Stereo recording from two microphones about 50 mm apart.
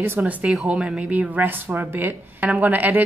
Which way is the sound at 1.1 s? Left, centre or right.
Right.